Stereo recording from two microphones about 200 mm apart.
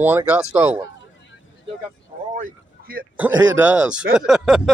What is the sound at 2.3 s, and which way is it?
Speech, 45° right (ahead or behind).